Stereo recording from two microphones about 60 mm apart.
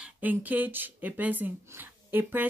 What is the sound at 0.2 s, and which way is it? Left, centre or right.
A woman's voice, right.